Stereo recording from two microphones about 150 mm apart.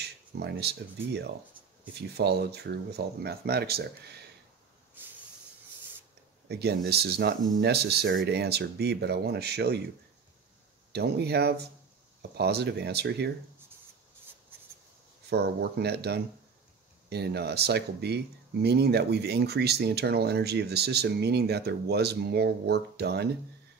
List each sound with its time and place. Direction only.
0.0 s a sound: 90° right
2.0 s speech: 90° right
6.5 s speech: 90° right
10.9 s speech: 90° right
15.2 s speech: 90° right